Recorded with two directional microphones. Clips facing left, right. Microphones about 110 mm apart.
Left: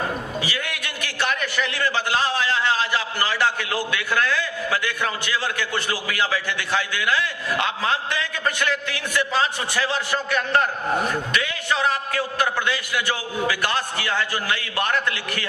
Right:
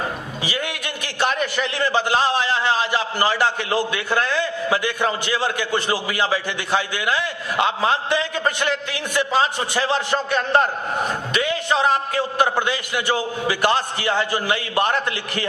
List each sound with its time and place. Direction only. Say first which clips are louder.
0.5 s a man's voice: right 3 dB; 20° right (ahead or behind)